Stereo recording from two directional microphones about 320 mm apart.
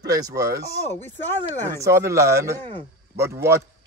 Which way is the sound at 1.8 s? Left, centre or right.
Centre.